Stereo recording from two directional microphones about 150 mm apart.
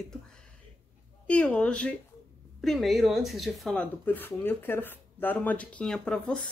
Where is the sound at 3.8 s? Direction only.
15° left (ahead or behind).